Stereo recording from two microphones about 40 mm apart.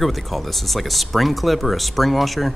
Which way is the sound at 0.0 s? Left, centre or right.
Centre.